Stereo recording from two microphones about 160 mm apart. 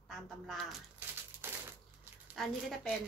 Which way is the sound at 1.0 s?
10° right (ahead or behind).